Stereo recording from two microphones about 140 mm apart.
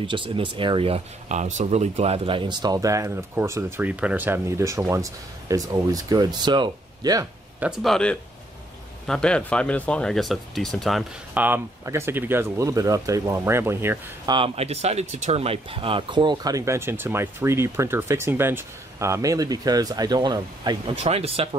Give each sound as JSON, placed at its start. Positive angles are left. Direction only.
{"t": 0.0, "sound": "speech", "side_deg": -35}
{"t": 7.8, "sound": "speech", "side_deg": 5}
{"t": 11.3, "sound": "speech", "side_deg": -15}
{"t": 14.2, "sound": "speech", "side_deg": -35}
{"t": 14.5, "sound": "speech", "side_deg": -50}
{"t": 20.9, "sound": "speech", "side_deg": -45}